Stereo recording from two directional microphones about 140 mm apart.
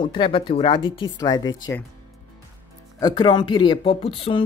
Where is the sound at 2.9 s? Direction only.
30° left (ahead or behind).